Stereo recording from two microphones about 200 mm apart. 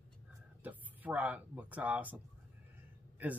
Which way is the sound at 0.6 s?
10° right (ahead or behind).